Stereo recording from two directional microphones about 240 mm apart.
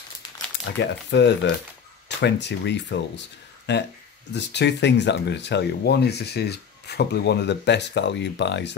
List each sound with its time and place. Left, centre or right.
0.7 s speech: left